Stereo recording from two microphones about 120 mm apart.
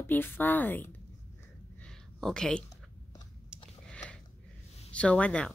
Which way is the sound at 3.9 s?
10° left (ahead or behind).